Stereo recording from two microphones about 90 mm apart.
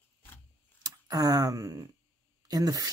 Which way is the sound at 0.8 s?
45° right (ahead or behind).